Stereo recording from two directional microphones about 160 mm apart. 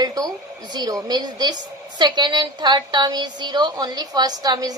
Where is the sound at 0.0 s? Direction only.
25° right (ahead or behind).